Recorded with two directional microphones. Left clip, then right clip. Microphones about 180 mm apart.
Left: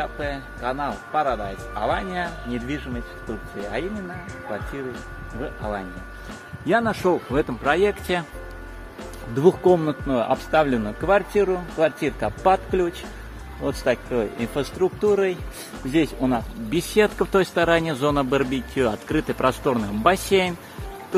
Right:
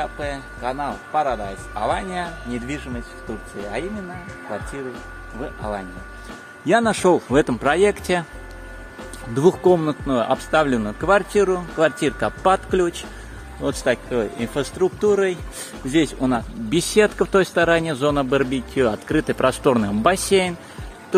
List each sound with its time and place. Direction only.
0.0 s speech: 15° right (ahead or behind)
5.4 s speech: 15° right (ahead or behind)
6.7 s speech: 55° right (ahead or behind)
7.9 s speech: 30° right (ahead or behind)
9.3 s speech: 20° right (ahead or behind)
20.2 s speech: 15° right (ahead or behind)